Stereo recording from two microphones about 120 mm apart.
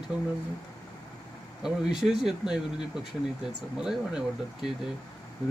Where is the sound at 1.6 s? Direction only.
5° right (ahead or behind).